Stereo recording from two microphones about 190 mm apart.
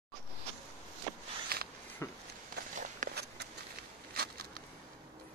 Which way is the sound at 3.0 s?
45° right (ahead or behind).